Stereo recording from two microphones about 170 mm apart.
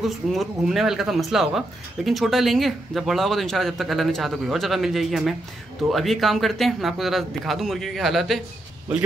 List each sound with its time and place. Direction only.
0.0 s speech: centre (ahead or behind)